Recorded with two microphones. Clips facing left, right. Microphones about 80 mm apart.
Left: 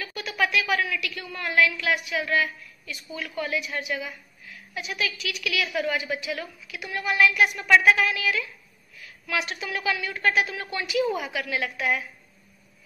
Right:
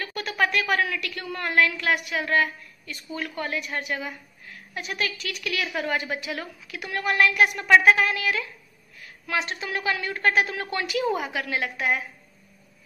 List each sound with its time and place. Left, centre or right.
0.0 s a sound: right
0.9 s a woman's voice: right
11.1 s a woman's voice: right